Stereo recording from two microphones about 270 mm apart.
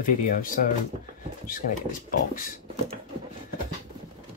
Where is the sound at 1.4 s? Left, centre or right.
Left.